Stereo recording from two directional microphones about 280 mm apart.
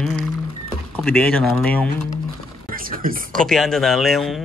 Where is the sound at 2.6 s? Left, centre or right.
Right.